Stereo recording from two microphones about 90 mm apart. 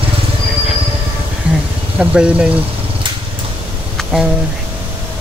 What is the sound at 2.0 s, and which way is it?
Speech, 10° right (ahead or behind).